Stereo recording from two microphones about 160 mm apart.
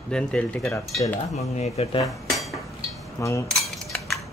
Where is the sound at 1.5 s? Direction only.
40° left (ahead or behind).